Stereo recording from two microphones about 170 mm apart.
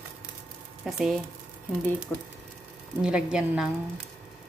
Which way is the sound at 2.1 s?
10° left (ahead or behind).